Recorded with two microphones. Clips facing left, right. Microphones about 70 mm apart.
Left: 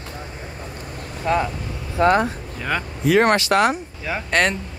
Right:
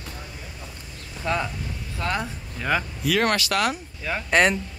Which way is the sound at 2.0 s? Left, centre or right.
Left.